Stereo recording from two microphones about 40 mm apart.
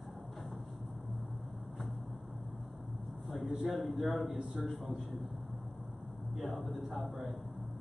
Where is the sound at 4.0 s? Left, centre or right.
Centre.